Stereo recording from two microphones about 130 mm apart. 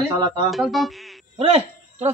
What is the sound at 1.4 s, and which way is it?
Speech, 50° right (ahead or behind).